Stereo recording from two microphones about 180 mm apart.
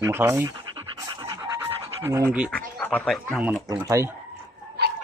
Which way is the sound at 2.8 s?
10° left (ahead or behind).